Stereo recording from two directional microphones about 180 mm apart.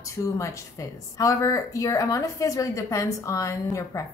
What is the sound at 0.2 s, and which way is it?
A woman's voice, 15° left (ahead or behind).